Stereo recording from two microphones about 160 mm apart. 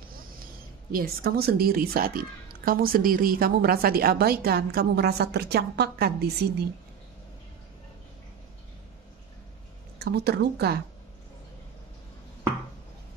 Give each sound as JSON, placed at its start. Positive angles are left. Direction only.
{"t": 0.9, "sound": "a woman's voice", "side_deg": -70}
{"t": 9.9, "sound": "speech", "side_deg": -90}